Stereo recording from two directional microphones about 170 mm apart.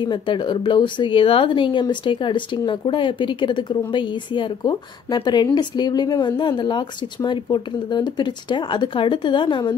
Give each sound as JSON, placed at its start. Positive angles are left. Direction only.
{"t": 0.0, "sound": "speech", "side_deg": 30}